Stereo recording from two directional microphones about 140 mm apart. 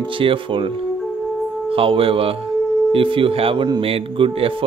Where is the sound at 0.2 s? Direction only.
40° right (ahead or behind).